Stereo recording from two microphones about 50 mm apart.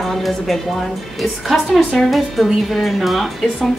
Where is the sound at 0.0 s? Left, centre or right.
Centre.